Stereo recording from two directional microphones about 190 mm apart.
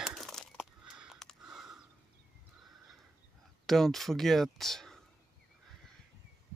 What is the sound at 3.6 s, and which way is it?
Speech, centre (ahead or behind).